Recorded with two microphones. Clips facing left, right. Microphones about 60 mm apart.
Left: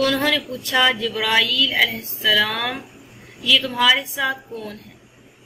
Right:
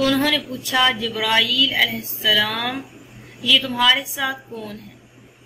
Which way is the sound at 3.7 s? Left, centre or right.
Centre.